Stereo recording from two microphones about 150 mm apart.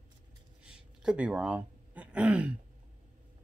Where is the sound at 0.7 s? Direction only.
5° right (ahead or behind).